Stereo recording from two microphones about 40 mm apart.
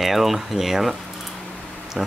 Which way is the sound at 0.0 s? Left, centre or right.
Centre.